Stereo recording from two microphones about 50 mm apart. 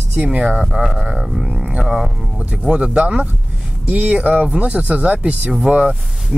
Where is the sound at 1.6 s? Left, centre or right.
Centre.